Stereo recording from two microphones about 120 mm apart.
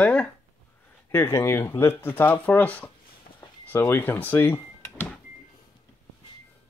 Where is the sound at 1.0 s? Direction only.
20° left (ahead or behind).